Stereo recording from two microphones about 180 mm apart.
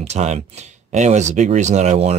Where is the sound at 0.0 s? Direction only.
40° right (ahead or behind).